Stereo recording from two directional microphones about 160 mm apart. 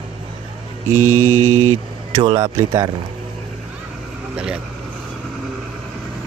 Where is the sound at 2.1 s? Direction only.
25° right (ahead or behind).